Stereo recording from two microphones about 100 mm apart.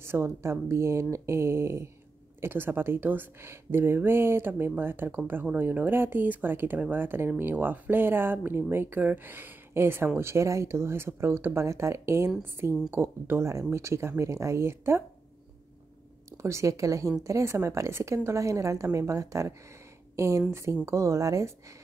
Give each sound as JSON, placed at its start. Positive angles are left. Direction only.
{"t": 0.0, "sound": "speech", "side_deg": -25}
{"t": 16.3, "sound": "a woman's voice", "side_deg": -30}